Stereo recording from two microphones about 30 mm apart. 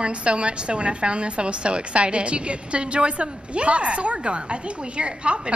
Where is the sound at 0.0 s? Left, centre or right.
Right.